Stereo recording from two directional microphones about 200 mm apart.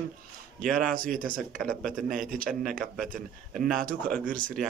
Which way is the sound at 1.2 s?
45° right (ahead or behind).